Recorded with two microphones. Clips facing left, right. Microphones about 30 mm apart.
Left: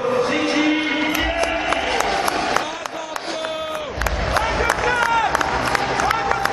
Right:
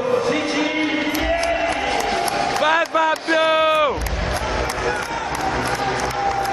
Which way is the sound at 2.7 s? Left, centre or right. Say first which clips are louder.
Right 11 dB; right.